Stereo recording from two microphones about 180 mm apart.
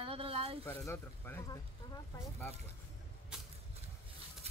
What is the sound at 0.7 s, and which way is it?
Speech, 10° left (ahead or behind).